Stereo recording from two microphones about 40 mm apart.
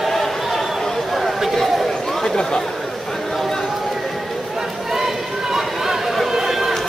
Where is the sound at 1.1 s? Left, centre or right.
Centre.